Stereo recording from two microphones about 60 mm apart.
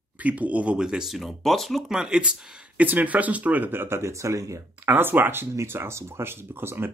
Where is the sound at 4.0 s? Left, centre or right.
Right.